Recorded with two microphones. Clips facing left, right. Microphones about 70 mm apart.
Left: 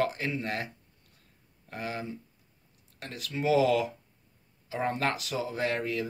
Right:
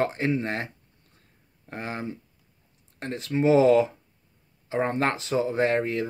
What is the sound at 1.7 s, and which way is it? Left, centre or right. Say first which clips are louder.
Speech: right 3 dB; right.